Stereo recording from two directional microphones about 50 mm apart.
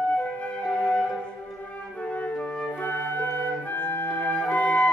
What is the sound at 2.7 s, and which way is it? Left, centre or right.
Music, left.